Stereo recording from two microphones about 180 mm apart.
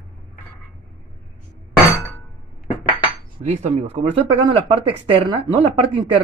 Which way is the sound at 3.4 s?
40° right (ahead or behind).